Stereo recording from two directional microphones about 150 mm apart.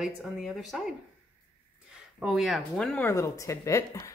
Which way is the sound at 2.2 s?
Centre (ahead or behind).